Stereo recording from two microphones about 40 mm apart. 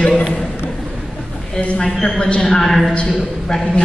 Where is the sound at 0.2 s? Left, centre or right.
Left.